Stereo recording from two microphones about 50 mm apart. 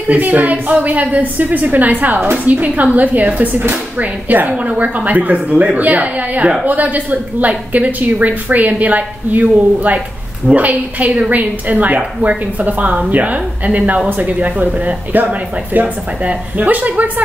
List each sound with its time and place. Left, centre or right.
0.1 s a woman's voice: right